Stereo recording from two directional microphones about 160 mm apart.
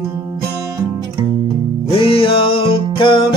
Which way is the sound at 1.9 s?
35° left (ahead or behind).